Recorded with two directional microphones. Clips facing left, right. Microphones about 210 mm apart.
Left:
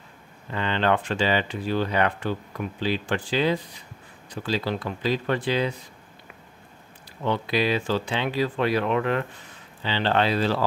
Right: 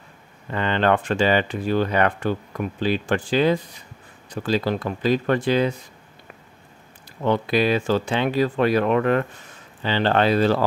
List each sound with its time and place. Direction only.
0.5 s speech: 50° right (ahead or behind)
7.2 s speech: 50° right (ahead or behind)